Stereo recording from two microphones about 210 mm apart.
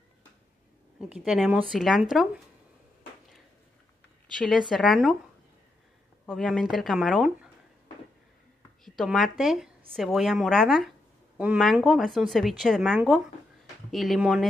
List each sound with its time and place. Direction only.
1.0 s speech: 5° right (ahead or behind)
4.4 s speech: centre (ahead or behind)
6.2 s speech: 5° left (ahead or behind)
8.8 s a woman's voice: centre (ahead or behind)